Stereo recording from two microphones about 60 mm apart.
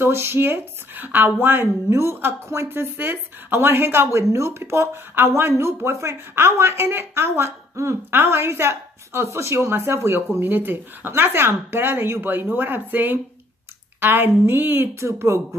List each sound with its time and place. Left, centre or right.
0.0 s speech: right
1.9 s a woman's voice: right
8.1 s a woman's voice: right